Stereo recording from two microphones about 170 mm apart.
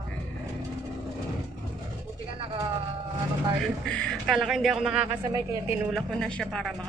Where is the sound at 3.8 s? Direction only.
5° left (ahead or behind).